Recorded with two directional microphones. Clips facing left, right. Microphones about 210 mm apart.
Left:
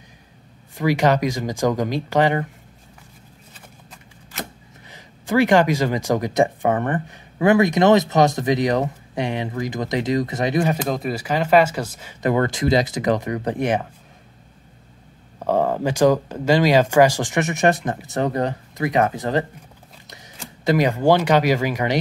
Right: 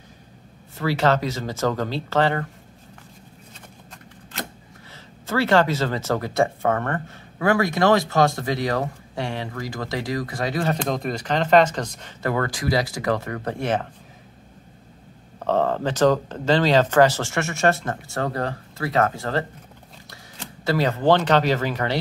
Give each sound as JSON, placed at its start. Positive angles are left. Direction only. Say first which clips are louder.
{"t": 0.7, "sound": "speech", "louder": "left 3 dB", "side_deg": 15}
{"t": 4.9, "sound": "speech", "louder": "left 5 dB", "side_deg": 15}
{"t": 10.7, "sound": "speech", "louder": "left 2 dB", "side_deg": 5}
{"t": 15.3, "sound": "speech", "louder": "left 1 dB", "side_deg": 10}
{"t": 20.6, "sound": "speech", "louder": "left 3 dB", "side_deg": 15}